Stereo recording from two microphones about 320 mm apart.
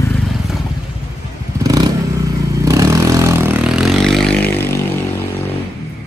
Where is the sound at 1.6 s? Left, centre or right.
Centre.